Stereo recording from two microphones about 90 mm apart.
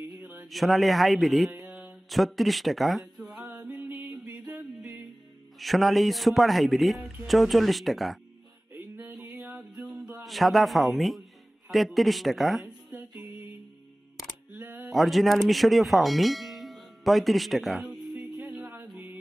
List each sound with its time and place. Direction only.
0.5 s a man's voice: centre (ahead or behind)
1.6 s mantra: 5° right (ahead or behind)
2.0 s speech: centre (ahead or behind)
4.5 s music: 15° right (ahead or behind)
5.6 s a man's voice: centre (ahead or behind)
8.7 s music: 25° right (ahead or behind)
9.8 s music: 5° right (ahead or behind)
10.2 s a man's voice: centre (ahead or behind)
12.9 s music: 15° right (ahead or behind)
14.5 s a sound: 20° right (ahead or behind)
14.9 s speech: centre (ahead or behind)
18.8 s music: 25° right (ahead or behind)